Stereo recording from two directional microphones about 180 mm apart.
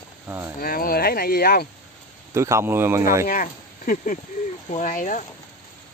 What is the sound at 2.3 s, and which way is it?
Speech, 15° right (ahead or behind).